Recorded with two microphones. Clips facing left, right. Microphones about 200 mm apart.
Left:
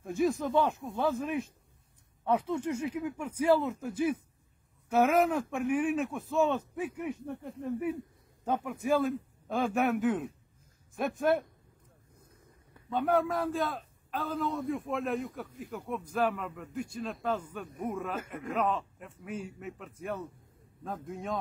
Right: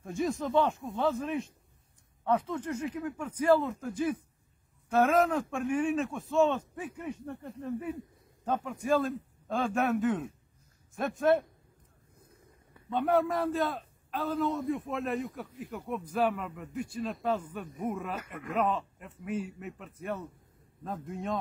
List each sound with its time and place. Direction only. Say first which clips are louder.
0.0 s a man's voice: left 3 dB; centre (ahead or behind)
12.9 s a man's voice: right 1 dB; centre (ahead or behind)
18.2 s speech: left 2 dB; 45° left (ahead or behind)
18.5 s a man's voice: right 1 dB; centre (ahead or behind)